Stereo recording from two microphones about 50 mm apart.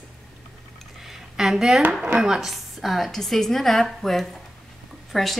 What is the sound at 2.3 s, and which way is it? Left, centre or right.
A woman's voice, centre.